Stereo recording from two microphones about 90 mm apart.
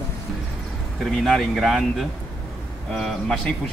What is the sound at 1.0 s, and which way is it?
A man's voice, centre (ahead or behind).